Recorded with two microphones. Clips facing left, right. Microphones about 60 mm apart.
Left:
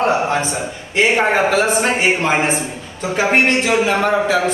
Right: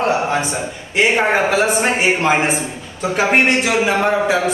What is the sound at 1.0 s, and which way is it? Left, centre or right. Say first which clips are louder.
Speech: even; centre.